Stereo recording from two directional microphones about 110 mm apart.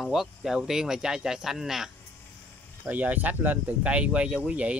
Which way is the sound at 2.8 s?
15° right (ahead or behind).